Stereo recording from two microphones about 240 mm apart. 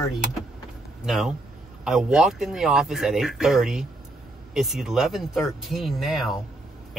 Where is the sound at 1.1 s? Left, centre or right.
Centre.